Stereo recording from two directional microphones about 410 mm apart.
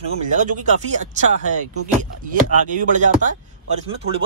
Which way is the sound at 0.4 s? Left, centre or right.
Centre.